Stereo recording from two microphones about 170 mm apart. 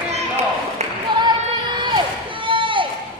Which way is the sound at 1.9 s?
30° right (ahead or behind).